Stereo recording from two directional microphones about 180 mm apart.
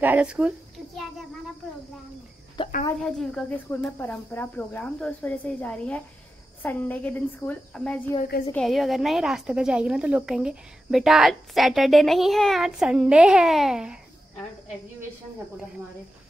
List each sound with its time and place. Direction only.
0.0 s a woman's voice: 10° right (ahead or behind)
2.6 s cricket: 25° left (ahead or behind)
3.0 s a woman's voice: centre (ahead or behind)